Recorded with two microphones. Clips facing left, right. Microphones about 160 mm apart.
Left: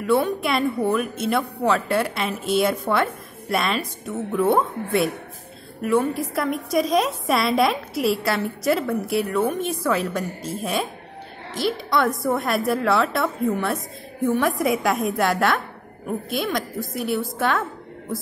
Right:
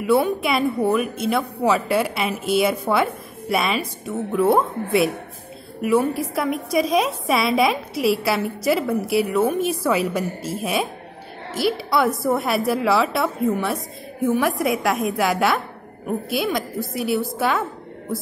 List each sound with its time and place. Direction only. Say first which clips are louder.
0.0 s a woman's voice: right 2 dB; 5° right (ahead or behind)